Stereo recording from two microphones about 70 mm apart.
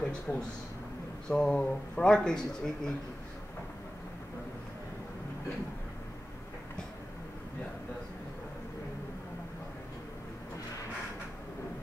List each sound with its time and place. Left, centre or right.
0.1 s speech: centre